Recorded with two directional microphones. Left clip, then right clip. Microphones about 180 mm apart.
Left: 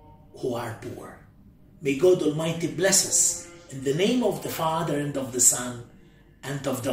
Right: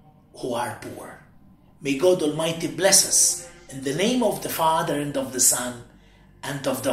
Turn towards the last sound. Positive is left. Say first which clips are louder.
# right 3 dB
turn(degrees=15)  # may be behind; listen again after turning